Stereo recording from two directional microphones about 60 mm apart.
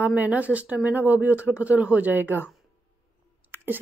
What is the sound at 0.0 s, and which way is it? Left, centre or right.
Speech, right.